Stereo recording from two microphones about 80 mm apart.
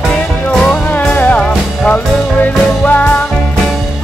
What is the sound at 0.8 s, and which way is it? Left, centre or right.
Music, left.